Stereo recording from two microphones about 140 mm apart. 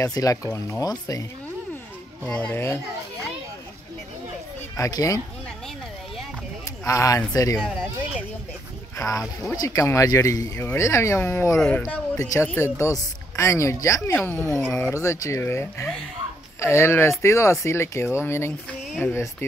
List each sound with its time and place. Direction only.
0.0 s speech: 25° left (ahead or behind)
2.2 s speech: 10° left (ahead or behind)
4.7 s speech: 20° left (ahead or behind)
6.6 s speech: 25° left (ahead or behind)
8.9 s speech: 25° left (ahead or behind)
11.5 s speech: 5° left (ahead or behind)
12.2 s speech: 20° left (ahead or behind)
18.9 s speech: 5° left (ahead or behind)